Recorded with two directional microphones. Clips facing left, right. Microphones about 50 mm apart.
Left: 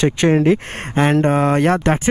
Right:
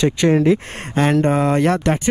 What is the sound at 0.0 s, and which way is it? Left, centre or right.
Speech, left.